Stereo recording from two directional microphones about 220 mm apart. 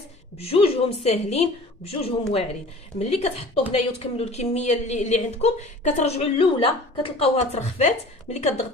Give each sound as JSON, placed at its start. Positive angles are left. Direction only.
{"t": 0.4, "sound": "speech", "side_deg": 25}